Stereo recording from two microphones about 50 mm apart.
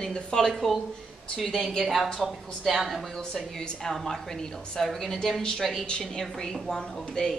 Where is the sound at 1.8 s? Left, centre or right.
Centre.